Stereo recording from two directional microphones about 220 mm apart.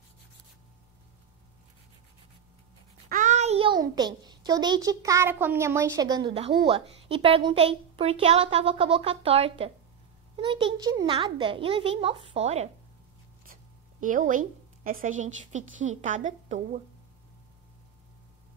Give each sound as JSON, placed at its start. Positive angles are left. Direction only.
{"t": 3.1, "sound": "a child's voice", "side_deg": -35}